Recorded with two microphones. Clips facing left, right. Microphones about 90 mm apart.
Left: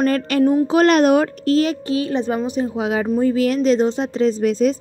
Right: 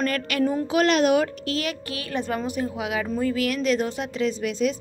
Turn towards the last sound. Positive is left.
turn(degrees=40)  # may be behind; listen again after turning